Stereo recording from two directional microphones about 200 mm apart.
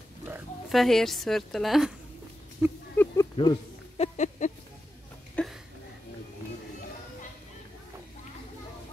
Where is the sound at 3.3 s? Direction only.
30° left (ahead or behind).